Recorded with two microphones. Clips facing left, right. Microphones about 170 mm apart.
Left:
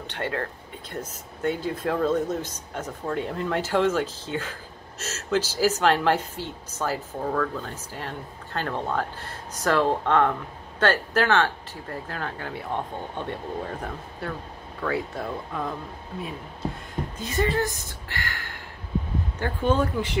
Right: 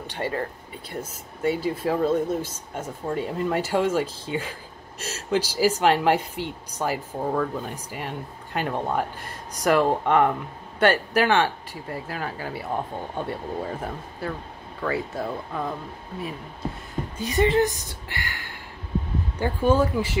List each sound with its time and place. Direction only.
0.0 s speech: 10° right (ahead or behind)
17.2 s speech: 20° right (ahead or behind)
19.3 s speech: 10° right (ahead or behind)